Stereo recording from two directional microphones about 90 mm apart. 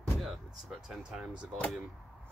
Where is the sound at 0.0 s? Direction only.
Centre (ahead or behind).